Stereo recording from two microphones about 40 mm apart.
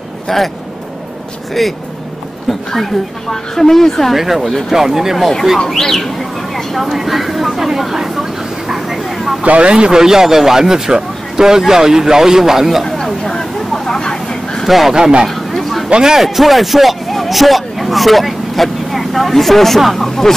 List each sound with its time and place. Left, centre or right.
0.3 s a woman's voice: centre
1.6 s a woman's voice: centre
4.1 s speech: centre
5.8 s speech: centre
9.0 s vehicle: centre
9.4 s speech: right
9.8 s speech: centre
12.8 s chatter: centre
13.3 s vehicle: centre
14.6 s a man's voice: centre
15.2 s a sound: centre
15.9 s speech: centre
16.2 s speech: centre